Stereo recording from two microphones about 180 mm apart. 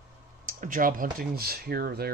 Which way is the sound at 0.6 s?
50° right (ahead or behind).